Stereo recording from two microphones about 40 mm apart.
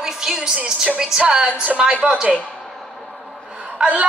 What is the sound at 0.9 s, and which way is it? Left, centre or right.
Speech, centre.